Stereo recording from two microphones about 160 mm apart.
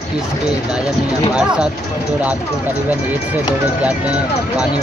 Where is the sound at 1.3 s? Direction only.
5° right (ahead or behind).